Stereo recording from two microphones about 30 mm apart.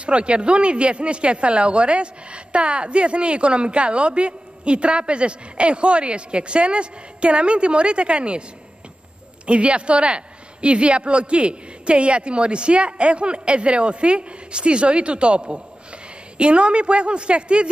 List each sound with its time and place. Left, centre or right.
0.0 s speech: right
9.5 s speech: right